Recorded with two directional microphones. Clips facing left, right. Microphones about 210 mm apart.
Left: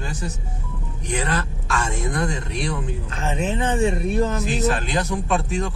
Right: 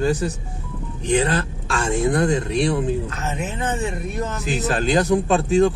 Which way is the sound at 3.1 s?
25° left (ahead or behind).